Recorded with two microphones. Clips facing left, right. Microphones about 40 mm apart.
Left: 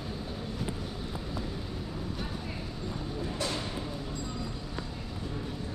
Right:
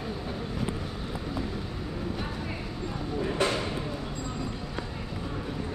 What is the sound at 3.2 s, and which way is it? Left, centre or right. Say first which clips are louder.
Music: right 7 dB; right.